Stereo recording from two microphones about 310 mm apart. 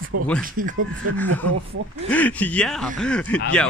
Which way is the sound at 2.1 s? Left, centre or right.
Centre.